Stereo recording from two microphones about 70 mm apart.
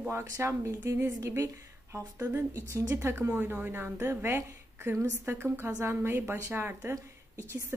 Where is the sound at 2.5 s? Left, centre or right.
Right.